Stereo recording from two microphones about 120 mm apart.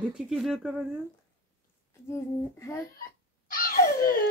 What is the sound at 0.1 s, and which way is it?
Speech, 5° right (ahead or behind).